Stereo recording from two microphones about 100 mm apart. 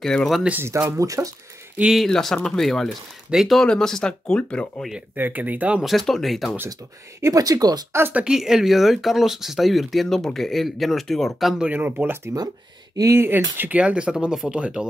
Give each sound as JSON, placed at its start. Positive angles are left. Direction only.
{"t": 0.0, "sound": "speech", "side_deg": 5}
{"t": 0.5, "sound": "speech", "side_deg": -20}
{"t": 1.8, "sound": "speech", "side_deg": -5}
{"t": 5.1, "sound": "speech", "side_deg": -15}
{"t": 5.9, "sound": "speech", "side_deg": 0}
{"t": 7.2, "sound": "speech", "side_deg": -35}
{"t": 8.1, "sound": "speech", "side_deg": -10}
{"t": 12.9, "sound": "speech", "side_deg": -30}